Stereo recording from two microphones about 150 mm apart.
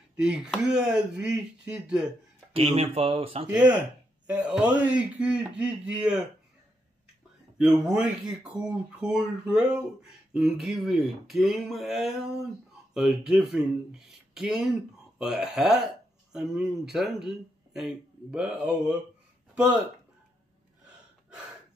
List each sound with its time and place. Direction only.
0.1 s speech: 5° right (ahead or behind)
2.5 s speech: 40° right (ahead or behind)
3.4 s a man's voice: 10° right (ahead or behind)
7.5 s speech: centre (ahead or behind)